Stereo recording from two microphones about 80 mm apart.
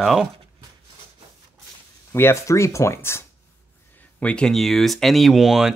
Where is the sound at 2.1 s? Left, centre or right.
Left.